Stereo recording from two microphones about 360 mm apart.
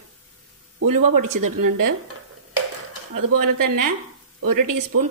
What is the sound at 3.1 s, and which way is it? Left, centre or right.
A woman's voice, right.